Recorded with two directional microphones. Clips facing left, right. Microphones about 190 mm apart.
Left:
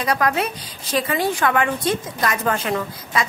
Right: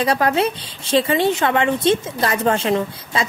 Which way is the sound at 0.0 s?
30° right (ahead or behind).